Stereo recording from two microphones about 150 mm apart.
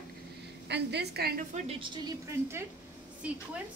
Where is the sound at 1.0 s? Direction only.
90° right.